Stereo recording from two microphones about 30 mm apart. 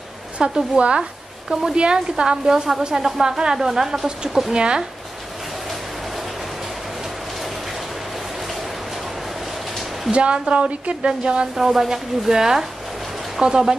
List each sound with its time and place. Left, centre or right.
0.4 s a woman's voice: right
1.5 s speech: centre
1.8 s a woman's voice: right; by 4.1 s centre
4.5 s a woman's voice: right
10.1 s a woman's voice: right
11.5 s a woman's voice: centre